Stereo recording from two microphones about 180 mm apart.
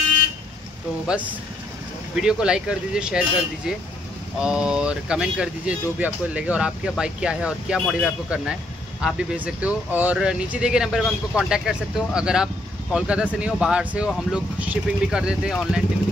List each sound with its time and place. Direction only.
2.1 s speech: 5° right (ahead or behind)